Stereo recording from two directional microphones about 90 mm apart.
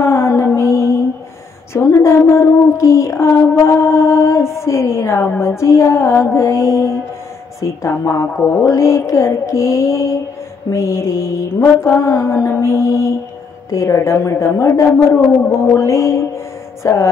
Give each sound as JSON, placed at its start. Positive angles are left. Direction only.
{"t": 0.0, "sound": "music", "side_deg": 30}
{"t": 1.7, "sound": "a sound", "side_deg": 30}
{"t": 5.4, "sound": "mantra", "side_deg": 30}